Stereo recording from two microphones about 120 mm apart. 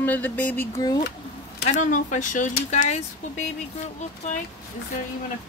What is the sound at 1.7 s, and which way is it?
Speech, 90° left.